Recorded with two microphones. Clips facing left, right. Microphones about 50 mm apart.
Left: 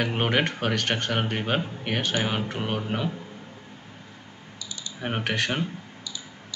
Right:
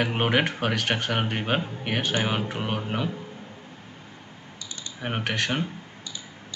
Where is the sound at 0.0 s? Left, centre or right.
Centre.